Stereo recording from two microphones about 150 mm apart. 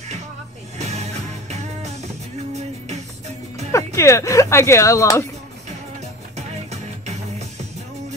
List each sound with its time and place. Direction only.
0.7 s music: 50° right (ahead or behind)
3.7 s speech: 20° left (ahead or behind)
6.3 s music: 50° right (ahead or behind)